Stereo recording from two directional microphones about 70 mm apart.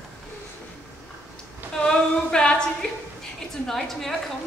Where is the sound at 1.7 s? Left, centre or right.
Centre.